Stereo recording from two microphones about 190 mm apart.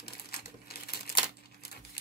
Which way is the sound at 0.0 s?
55° left (ahead or behind).